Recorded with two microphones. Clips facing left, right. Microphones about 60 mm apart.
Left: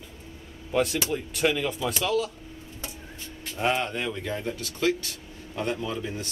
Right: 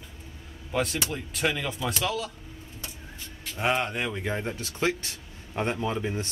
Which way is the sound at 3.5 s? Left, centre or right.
Centre.